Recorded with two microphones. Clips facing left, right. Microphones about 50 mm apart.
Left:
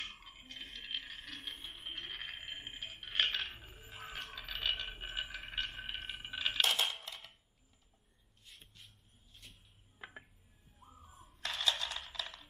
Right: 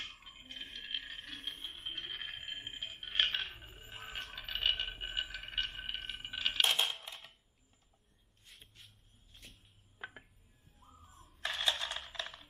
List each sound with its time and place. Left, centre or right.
0.2 s a sound: centre
6.1 s coin: centre
8.8 s dishes: centre
10.8 s a sound: centre
11.4 s coin: centre
11.9 s music: centre